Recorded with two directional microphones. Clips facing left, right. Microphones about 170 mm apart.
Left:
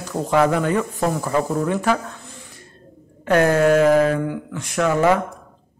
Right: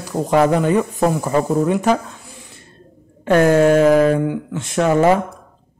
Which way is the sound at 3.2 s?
25° right (ahead or behind).